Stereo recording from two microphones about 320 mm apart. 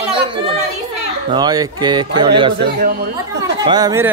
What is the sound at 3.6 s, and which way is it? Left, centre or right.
Speech, centre.